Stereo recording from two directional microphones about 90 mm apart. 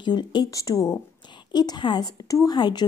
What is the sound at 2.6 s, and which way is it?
Speech, 55° left (ahead or behind).